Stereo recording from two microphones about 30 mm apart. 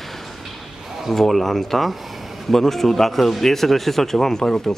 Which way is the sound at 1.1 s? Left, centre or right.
Centre.